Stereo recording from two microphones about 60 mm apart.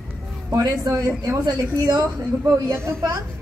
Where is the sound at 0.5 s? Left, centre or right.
Right.